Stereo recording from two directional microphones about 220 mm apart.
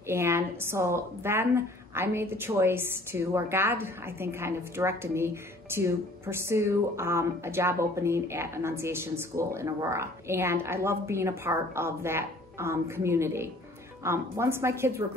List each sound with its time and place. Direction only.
0.0 s a woman's voice: 10° right (ahead or behind)